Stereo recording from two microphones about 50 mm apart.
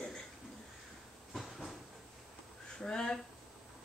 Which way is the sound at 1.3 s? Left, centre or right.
Centre.